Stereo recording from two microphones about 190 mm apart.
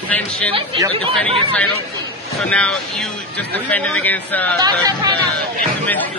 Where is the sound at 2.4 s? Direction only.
5° left (ahead or behind).